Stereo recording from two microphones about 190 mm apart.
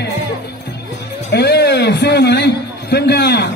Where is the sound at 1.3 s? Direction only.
60° left (ahead or behind).